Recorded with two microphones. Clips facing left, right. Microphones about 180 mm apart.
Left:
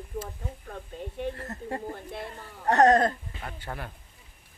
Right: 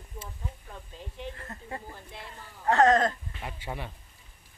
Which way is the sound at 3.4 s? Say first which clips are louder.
Right 1 dB; 5° right (ahead or behind).